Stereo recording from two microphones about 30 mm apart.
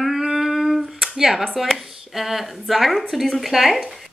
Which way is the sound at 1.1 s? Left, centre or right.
Centre.